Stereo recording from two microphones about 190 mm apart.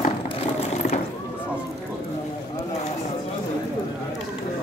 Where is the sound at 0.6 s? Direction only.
35° left (ahead or behind).